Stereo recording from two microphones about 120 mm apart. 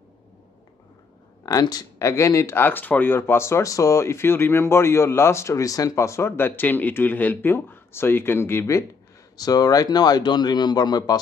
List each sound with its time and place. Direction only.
1.4 s speech: 30° left (ahead or behind)